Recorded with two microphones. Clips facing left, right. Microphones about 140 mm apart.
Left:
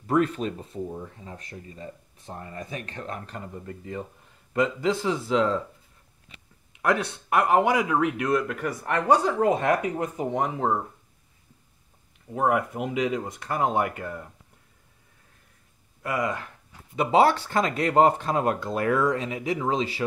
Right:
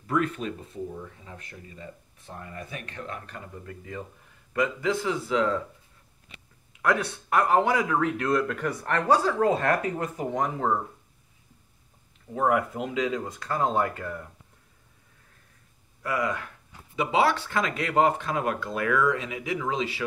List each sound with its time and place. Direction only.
0.0 s speech: 30° left (ahead or behind)
6.8 s speech: 20° left (ahead or behind)
12.4 s speech: 20° left (ahead or behind)
16.0 s speech: 25° left (ahead or behind)
16.9 s speech: 40° left (ahead or behind)